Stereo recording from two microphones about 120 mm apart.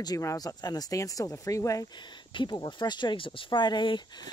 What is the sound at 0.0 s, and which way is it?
Speech, 30° left (ahead or behind).